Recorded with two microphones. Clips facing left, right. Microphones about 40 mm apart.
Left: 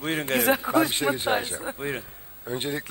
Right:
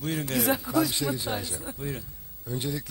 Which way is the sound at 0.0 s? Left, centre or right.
Left.